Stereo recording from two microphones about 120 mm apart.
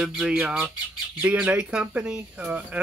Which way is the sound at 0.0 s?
5° right (ahead or behind).